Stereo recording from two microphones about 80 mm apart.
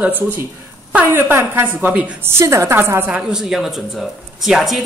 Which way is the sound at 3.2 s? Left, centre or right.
Centre.